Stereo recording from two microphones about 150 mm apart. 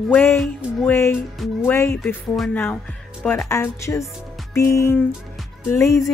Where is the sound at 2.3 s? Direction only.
Centre (ahead or behind).